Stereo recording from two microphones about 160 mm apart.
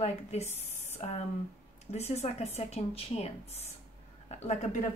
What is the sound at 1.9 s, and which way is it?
A woman's voice, 40° left (ahead or behind).